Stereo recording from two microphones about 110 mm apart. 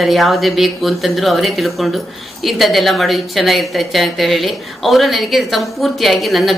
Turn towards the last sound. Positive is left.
turn(degrees=0)  # may be behind; listen again after turning